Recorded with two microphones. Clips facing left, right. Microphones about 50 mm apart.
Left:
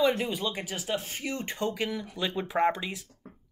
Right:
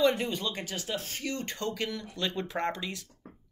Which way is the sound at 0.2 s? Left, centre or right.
Centre.